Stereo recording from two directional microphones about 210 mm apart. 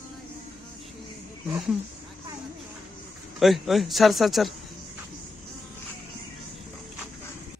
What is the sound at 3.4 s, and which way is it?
Speech, centre (ahead or behind).